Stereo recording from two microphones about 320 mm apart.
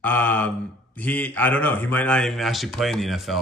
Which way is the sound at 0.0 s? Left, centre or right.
Centre.